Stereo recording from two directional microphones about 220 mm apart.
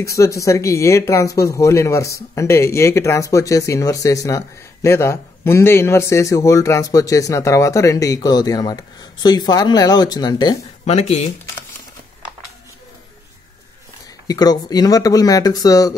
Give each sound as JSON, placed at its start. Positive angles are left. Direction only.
{"t": 0.0, "sound": "speech", "side_deg": 15}
{"t": 14.2, "sound": "speech", "side_deg": 15}